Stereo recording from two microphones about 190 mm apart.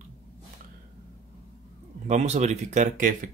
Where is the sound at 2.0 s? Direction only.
35° right (ahead or behind).